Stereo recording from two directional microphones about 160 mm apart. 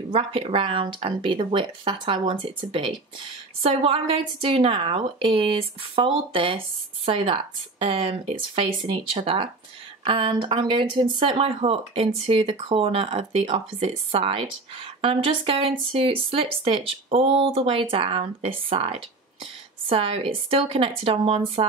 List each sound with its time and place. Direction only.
0.1 s speech: 35° right (ahead or behind)